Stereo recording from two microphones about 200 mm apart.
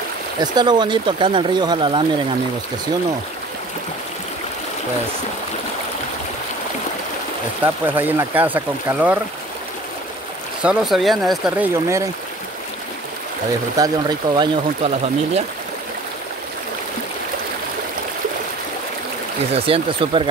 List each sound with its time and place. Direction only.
0.4 s speech: 20° right (ahead or behind)
7.6 s speech: 10° right (ahead or behind)
10.6 s speech: 5° right (ahead or behind)
13.7 s speech: 20° right (ahead or behind)
19.5 s speech: 30° right (ahead or behind)